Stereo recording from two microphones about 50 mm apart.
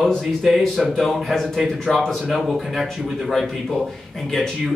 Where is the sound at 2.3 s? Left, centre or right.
Centre.